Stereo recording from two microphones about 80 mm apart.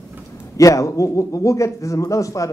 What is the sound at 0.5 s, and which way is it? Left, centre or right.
A man's voice, left.